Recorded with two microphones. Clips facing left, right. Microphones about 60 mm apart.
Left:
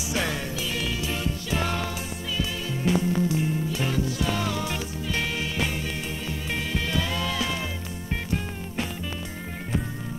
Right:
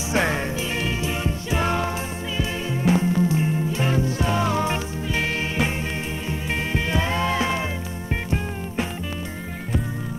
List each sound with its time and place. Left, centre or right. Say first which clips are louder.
0.1 s music: right 6 dB; right
6.7 s music: right 4 dB; right